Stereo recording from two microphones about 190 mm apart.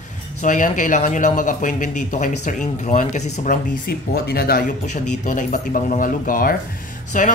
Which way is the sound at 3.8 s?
55° left (ahead or behind).